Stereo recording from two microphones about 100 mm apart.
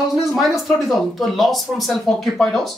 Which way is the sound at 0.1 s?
Centre (ahead or behind).